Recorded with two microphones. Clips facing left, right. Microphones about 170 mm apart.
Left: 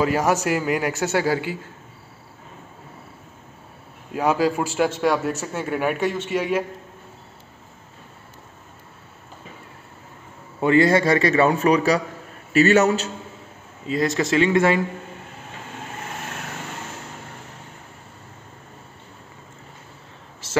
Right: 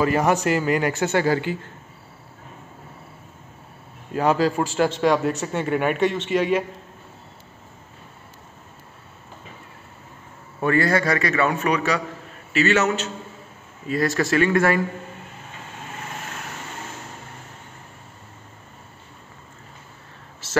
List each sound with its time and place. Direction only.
0.0 s a man's voice: 5° left (ahead or behind)
4.1 s a man's voice: 10° left (ahead or behind)
10.6 s a man's voice: 20° left (ahead or behind)
13.8 s a man's voice: 20° left (ahead or behind)